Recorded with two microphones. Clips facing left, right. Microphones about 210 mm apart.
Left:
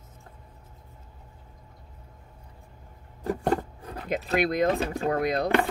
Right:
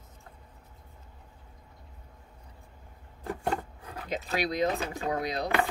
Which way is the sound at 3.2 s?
40° left (ahead or behind).